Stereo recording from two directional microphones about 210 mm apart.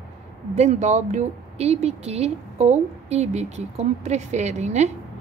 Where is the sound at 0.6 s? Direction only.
35° right (ahead or behind).